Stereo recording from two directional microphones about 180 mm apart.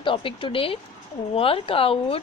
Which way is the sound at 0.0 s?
30° left (ahead or behind).